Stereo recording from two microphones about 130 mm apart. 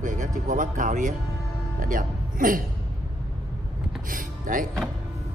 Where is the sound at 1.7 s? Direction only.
90° right.